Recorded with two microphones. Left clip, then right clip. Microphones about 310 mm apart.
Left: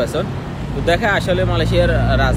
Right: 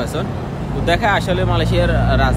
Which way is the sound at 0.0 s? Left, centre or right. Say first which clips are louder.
Left 3 dB; centre.